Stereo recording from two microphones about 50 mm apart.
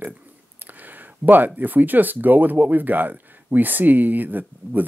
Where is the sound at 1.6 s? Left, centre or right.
Right.